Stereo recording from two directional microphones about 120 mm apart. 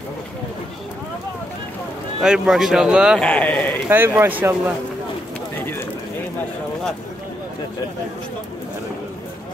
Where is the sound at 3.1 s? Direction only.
10° left (ahead or behind).